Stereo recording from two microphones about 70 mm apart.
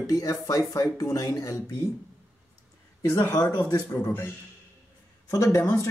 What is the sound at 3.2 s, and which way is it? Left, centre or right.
Speech, left.